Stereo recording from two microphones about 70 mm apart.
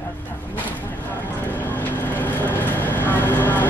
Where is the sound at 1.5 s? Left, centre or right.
Left.